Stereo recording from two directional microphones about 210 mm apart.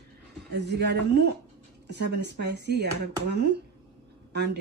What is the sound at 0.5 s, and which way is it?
Speech, 55° right (ahead or behind).